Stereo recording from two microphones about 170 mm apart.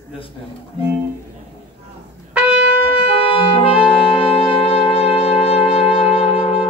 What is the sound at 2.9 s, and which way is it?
Brass instrument, 35° left (ahead or behind).